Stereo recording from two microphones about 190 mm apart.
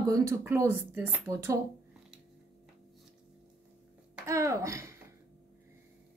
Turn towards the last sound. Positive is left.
turn(degrees=-15)  # may be behind; listen again after turning